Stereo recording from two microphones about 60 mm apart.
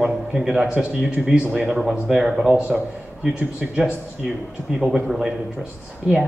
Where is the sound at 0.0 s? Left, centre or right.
Centre.